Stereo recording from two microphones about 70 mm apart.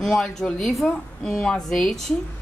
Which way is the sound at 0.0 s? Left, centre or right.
Centre.